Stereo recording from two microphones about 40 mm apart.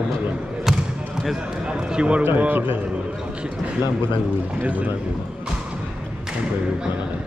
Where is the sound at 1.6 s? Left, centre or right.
Right.